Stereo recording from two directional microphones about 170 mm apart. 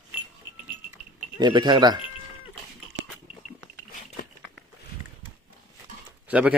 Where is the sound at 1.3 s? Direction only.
25° right (ahead or behind).